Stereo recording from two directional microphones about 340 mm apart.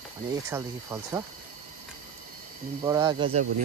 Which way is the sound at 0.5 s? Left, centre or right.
Centre.